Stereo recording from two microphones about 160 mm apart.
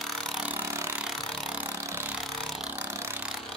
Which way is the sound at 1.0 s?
Centre (ahead or behind).